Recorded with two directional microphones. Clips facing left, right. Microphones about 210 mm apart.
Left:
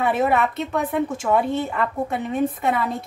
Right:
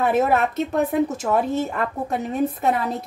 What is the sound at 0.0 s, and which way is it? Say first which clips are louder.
A woman's voice: right 1 dB; 40° right (ahead or behind).